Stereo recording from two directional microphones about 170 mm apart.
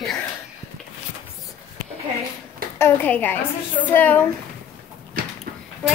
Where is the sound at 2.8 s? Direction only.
10° left (ahead or behind).